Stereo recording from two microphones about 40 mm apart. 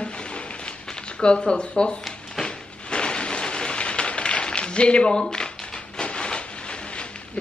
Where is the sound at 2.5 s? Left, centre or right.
Left.